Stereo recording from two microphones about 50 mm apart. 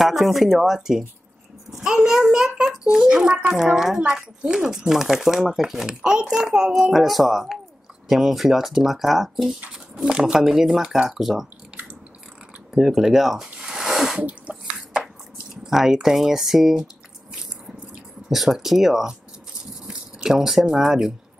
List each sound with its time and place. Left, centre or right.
0.0 s speech: centre
1.7 s a sound: centre
2.0 s speech: centre
4.0 s speech: centre
6.9 s speech: centre
9.6 s speech: centre
12.7 s speech: centre
13.7 s a sound: centre
14.1 s sneeze: right
15.5 s speech: centre